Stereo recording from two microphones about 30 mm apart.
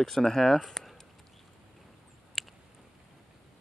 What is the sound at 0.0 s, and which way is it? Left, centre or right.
Speech, centre.